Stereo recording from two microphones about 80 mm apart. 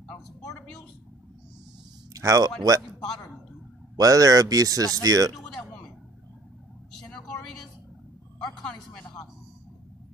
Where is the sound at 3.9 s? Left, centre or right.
Right.